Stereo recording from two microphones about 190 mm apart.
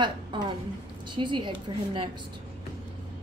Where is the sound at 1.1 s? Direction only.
25° right (ahead or behind).